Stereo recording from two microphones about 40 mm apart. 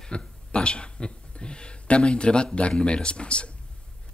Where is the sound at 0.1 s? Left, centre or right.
Left.